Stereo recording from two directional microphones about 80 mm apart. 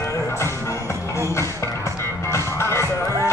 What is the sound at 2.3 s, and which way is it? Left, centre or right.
Music, left.